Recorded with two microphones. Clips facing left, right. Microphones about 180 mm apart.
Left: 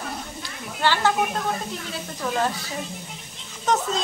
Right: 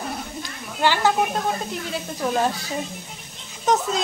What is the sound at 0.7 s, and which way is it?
Speech, 15° right (ahead or behind).